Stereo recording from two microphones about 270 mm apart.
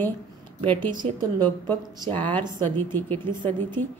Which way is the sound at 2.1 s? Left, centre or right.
Centre.